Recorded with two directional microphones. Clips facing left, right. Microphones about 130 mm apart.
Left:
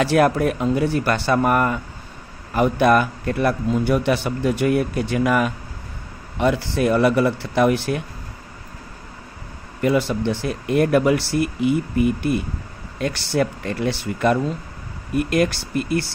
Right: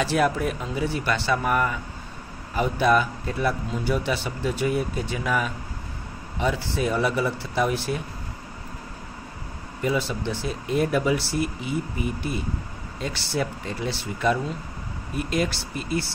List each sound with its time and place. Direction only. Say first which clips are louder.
0.0 s a man's voice: left 6 dB; 60° left (ahead or behind)
9.8 s a man's voice: left 6 dB; 60° left (ahead or behind)